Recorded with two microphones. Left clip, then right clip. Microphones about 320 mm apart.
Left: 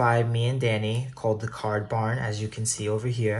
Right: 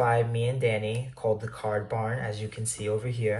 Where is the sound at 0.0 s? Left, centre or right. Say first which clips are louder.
Left 1 dB; centre.